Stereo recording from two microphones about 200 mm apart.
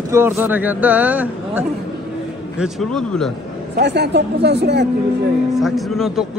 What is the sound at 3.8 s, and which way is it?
Speech, 55° right (ahead or behind).